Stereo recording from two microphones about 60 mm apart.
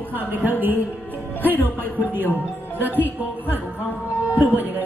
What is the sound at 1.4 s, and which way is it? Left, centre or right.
Speech, left.